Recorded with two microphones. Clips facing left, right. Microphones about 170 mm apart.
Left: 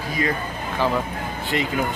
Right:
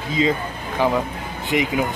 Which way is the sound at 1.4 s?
15° right (ahead or behind).